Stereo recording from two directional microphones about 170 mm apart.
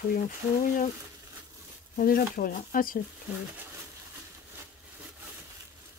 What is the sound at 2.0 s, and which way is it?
Speech, 60° left (ahead or behind).